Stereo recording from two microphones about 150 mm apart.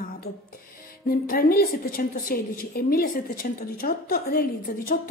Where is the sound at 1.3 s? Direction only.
75° left (ahead or behind).